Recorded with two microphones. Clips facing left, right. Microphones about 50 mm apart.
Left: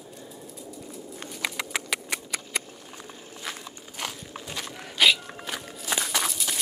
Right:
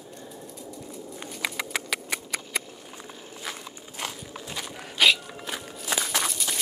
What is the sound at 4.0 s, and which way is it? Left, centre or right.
Walk, centre.